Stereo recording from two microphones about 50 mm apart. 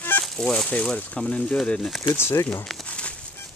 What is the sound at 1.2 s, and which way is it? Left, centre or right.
Speech, centre.